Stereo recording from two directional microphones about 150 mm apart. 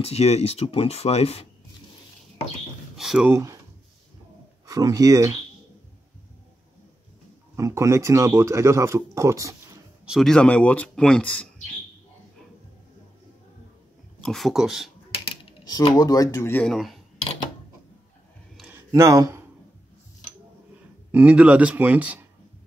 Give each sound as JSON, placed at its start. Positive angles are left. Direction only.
{"t": 0.0, "sound": "speech", "side_deg": 45}
{"t": 3.0, "sound": "a sound", "side_deg": 0}
{"t": 3.3, "sound": "speech", "side_deg": -20}
{"t": 4.6, "sound": "speech", "side_deg": -25}
{"t": 7.5, "sound": "speech", "side_deg": -20}
{"t": 10.0, "sound": "speech", "side_deg": 0}
{"t": 14.2, "sound": "speech", "side_deg": 0}
{"t": 16.0, "sound": "speech", "side_deg": 25}
{"t": 16.5, "sound": "speech", "side_deg": 5}
{"t": 18.7, "sound": "a sound", "side_deg": -20}
{"t": 21.1, "sound": "speech", "side_deg": -10}